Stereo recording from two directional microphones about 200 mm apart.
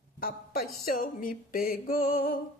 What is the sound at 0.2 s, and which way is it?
A woman's voice, 50° left (ahead or behind).